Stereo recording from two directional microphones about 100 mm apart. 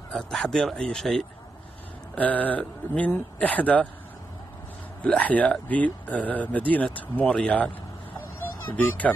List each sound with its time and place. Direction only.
0.1 s speech: 5° left (ahead or behind)
2.1 s speech: 15° left (ahead or behind)
5.0 s speech: 15° left (ahead or behind)